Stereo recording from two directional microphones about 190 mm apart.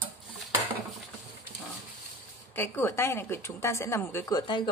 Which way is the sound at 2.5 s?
10° left (ahead or behind).